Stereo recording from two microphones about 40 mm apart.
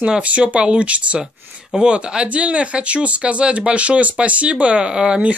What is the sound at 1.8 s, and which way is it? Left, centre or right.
Speech, right.